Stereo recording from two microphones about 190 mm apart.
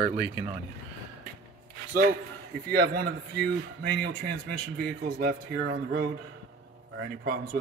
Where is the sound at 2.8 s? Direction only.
55° right (ahead or behind).